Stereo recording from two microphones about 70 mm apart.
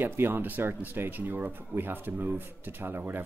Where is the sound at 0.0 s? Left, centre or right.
Right.